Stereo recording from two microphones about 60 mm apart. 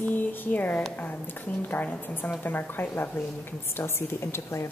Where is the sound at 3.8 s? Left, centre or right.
Left.